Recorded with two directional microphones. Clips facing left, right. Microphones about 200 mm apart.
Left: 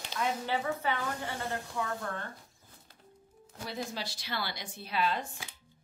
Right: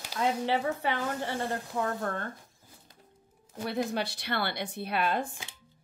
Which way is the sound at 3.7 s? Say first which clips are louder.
Right 7 dB; 60° right (ahead or behind).